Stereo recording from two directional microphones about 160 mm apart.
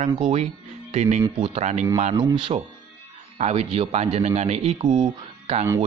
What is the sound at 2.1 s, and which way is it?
Speech, 30° right (ahead or behind).